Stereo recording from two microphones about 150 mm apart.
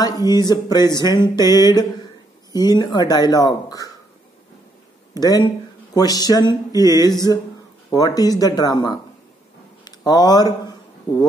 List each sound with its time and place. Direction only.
0.2 s speech: 25° left (ahead or behind)
5.1 s speech: 25° left (ahead or behind)